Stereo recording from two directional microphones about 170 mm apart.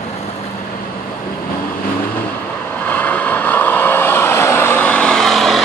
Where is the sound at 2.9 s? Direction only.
10° left (ahead or behind).